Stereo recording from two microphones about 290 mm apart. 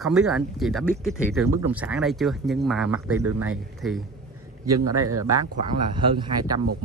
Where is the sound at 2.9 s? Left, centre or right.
Right.